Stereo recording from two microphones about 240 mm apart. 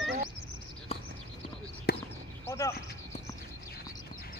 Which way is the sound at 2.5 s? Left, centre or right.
Centre.